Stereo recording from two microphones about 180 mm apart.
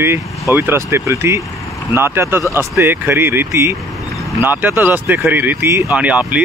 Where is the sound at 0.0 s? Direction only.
15° right (ahead or behind).